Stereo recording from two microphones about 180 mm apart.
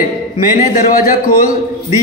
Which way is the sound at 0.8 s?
50° left (ahead or behind).